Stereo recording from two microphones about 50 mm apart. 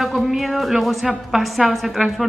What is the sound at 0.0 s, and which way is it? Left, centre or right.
A woman's voice, centre.